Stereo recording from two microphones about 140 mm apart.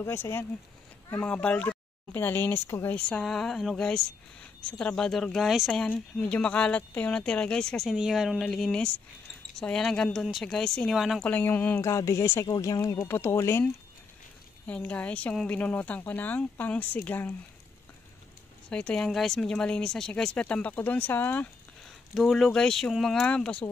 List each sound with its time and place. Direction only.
0.0 s speech: 20° left (ahead or behind)
3.1 s speech: 5° left (ahead or behind)
11.2 s speech: 10° left (ahead or behind)
14.7 s speech: 10° left (ahead or behind)
18.7 s speech: 5° left (ahead or behind)
22.1 s speech: centre (ahead or behind)